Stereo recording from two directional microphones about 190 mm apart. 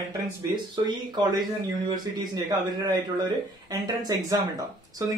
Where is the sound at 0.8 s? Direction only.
20° right (ahead or behind).